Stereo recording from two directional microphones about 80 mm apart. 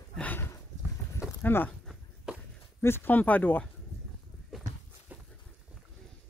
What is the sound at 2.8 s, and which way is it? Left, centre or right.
Speech, left.